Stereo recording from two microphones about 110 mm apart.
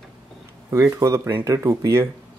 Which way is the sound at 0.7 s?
30° right (ahead or behind).